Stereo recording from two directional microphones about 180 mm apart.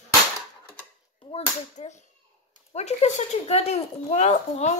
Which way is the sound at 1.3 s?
40° left (ahead or behind).